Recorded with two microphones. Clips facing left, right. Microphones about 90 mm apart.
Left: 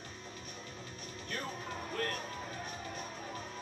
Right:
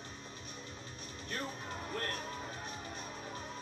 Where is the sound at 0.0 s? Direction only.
30° right (ahead or behind).